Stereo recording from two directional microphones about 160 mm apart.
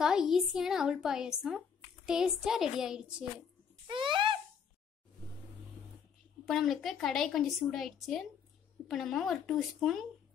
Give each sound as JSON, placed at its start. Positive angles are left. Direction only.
{"t": 0.0, "sound": "a woman's voice", "side_deg": -5}
{"t": 3.8, "sound": "a sound", "side_deg": -30}
{"t": 6.4, "sound": "a woman's voice", "side_deg": 0}